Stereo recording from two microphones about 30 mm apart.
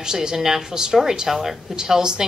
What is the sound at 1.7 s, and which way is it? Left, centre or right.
Speech, right.